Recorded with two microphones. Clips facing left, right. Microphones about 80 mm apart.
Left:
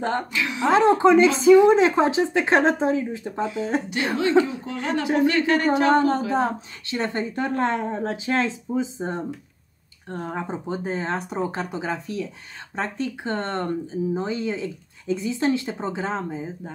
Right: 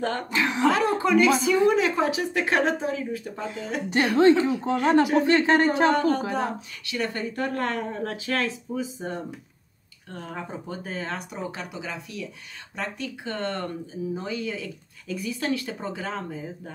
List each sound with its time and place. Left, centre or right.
0.3 s speech: right
0.7 s speech: left
4.5 s speech: right
5.9 s speech: left